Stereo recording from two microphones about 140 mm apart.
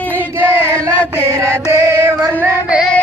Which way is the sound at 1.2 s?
20° right (ahead or behind).